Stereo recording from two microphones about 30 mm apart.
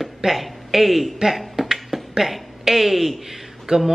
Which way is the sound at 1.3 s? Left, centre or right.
Centre.